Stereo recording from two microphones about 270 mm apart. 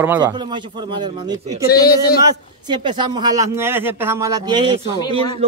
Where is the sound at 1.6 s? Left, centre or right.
Left.